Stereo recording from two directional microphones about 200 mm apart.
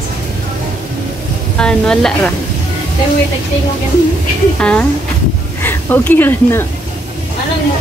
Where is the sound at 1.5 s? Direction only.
5° left (ahead or behind).